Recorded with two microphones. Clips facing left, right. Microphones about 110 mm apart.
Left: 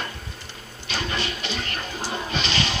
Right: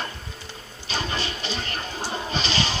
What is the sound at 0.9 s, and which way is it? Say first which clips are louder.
Music: even; 30° right (ahead or behind).